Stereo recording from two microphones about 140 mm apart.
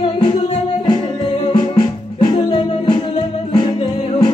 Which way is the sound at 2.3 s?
40° left (ahead or behind).